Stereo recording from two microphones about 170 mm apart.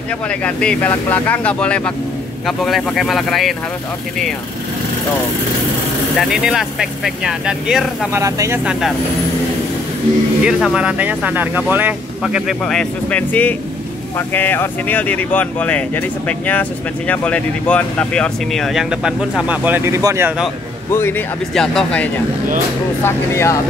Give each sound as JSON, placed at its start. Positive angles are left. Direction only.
{"t": 0.3, "sound": "speech", "side_deg": 5}
{"t": 6.1, "sound": "speech", "side_deg": -5}
{"t": 8.1, "sound": "speech", "side_deg": -20}
{"t": 10.4, "sound": "speech", "side_deg": -5}
{"t": 20.9, "sound": "speech", "side_deg": 15}
{"t": 23.0, "sound": "speech", "side_deg": 15}